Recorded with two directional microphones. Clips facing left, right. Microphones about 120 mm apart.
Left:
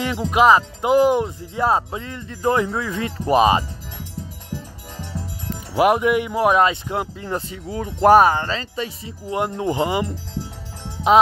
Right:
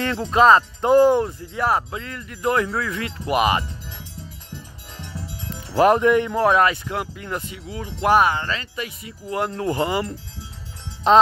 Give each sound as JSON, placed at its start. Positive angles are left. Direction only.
{"t": 0.0, "sound": "speech", "side_deg": 15}
{"t": 5.5, "sound": "speech", "side_deg": 10}